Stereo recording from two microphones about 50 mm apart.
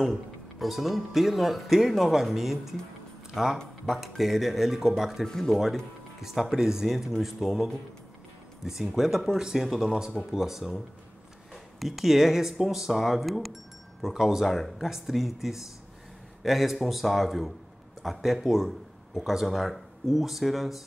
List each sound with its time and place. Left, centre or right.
0.6 s speech: centre
5.2 s speech: centre
6.2 s speech: centre
14.4 s speech: centre